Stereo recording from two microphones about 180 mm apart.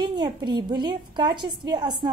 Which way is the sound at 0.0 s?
25° right (ahead or behind).